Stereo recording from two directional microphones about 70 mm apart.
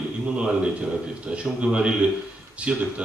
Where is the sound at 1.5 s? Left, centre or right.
Centre.